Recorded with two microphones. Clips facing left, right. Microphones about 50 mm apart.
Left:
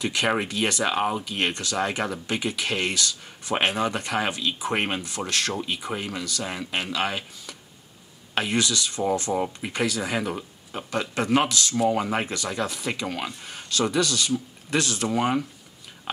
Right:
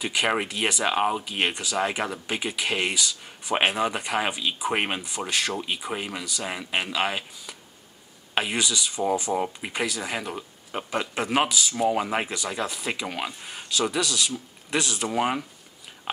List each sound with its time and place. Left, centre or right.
0.0 s speech: centre
10.7 s speech: right
11.1 s speech: centre